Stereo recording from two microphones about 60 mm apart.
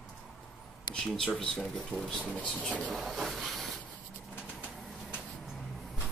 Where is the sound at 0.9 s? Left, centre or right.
Centre.